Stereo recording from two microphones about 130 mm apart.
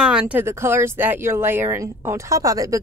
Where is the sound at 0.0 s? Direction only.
5° right (ahead or behind).